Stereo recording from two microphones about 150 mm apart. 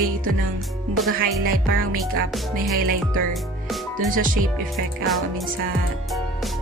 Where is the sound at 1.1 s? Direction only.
75° right (ahead or behind).